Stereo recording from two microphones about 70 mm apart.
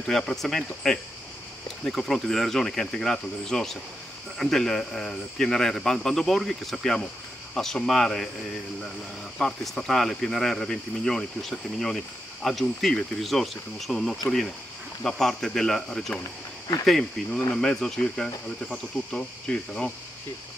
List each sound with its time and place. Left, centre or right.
0.0 s speech: centre
9.4 s speech: centre